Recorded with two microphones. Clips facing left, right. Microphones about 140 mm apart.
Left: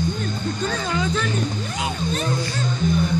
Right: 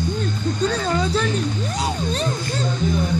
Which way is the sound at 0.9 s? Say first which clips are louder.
Right 3 dB; 35° right (ahead or behind).